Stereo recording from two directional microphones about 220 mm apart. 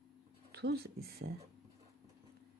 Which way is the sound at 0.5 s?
50° right (ahead or behind).